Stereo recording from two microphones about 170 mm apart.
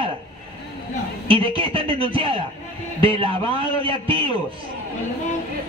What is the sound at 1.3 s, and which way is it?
A man's voice, 30° right (ahead or behind).